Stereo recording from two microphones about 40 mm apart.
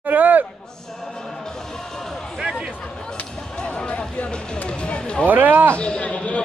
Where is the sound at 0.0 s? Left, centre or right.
Right.